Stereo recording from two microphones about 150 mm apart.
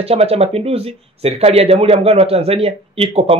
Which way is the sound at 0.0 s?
40° right (ahead or behind).